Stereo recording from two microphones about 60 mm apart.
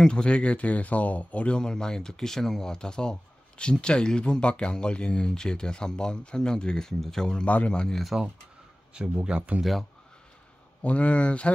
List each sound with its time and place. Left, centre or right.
0.0 s speech: centre
8.0 s speech: centre
9.2 s speech: centre
10.8 s speech: left